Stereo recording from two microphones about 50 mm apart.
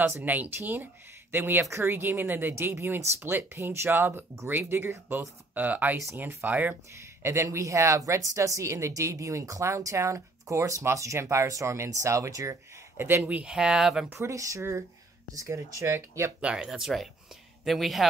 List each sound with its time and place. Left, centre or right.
0.2 s speech: right
1.7 s speech: right
5.5 s speech: right
7.0 s speech: right
12.9 s speech: right
13.5 s speech: centre
14.2 s speech: right
16.3 s speech: right
16.8 s a man's voice: centre